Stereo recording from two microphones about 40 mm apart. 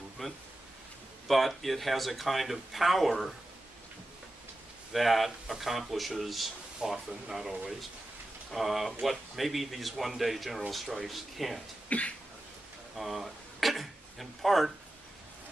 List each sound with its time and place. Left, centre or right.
0.2 s speech: centre
4.9 s speech: centre
11.9 s a sound: left
12.9 s speech: centre